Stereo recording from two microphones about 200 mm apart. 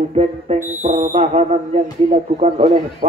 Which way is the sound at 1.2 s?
30° right (ahead or behind).